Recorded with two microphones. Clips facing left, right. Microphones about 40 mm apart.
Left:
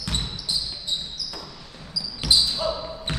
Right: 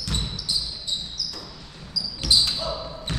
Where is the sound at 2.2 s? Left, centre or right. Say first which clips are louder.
Left 1 dB; centre.